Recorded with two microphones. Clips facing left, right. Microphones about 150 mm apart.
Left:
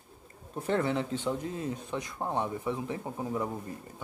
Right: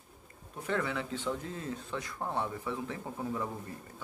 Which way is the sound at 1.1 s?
15° left (ahead or behind).